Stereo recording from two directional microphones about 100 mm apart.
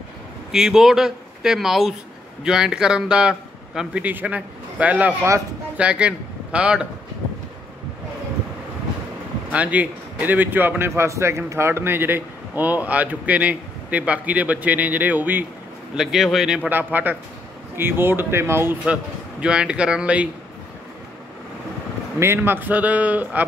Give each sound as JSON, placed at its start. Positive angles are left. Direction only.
{"t": 0.5, "sound": "a man's voice", "side_deg": -5}
{"t": 9.5, "sound": "a man's voice", "side_deg": -15}
{"t": 16.0, "sound": "speech", "side_deg": -5}
{"t": 16.6, "sound": "a man's voice", "side_deg": -20}
{"t": 19.4, "sound": "a man's voice", "side_deg": -10}
{"t": 22.2, "sound": "a man's voice", "side_deg": -25}